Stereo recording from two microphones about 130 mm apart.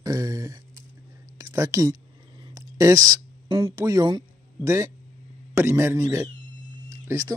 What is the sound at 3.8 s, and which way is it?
Speech, 30° right (ahead or behind).